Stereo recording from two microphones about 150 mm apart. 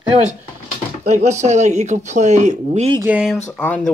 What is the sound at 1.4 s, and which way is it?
Speech, 50° right (ahead or behind).